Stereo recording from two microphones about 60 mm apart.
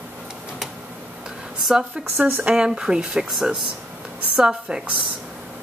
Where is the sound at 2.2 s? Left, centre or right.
Right.